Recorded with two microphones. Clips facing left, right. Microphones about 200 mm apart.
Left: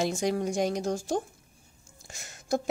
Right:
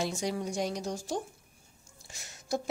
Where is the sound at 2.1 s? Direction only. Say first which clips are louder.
Left 4 dB; 50° left (ahead or behind).